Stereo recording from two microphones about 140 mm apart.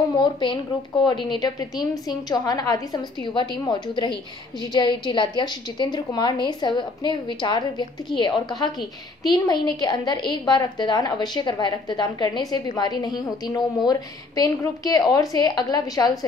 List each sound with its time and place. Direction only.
0.2 s a woman's voice: 35° left (ahead or behind)